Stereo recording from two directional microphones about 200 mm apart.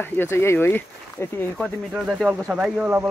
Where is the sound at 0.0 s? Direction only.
10° left (ahead or behind).